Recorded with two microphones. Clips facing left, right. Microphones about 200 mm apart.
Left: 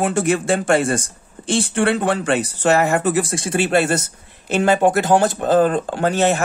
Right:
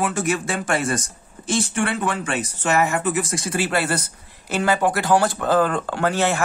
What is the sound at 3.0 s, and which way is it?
Speech, 35° left (ahead or behind).